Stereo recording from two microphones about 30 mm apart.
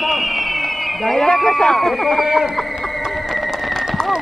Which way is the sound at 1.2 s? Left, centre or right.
Centre.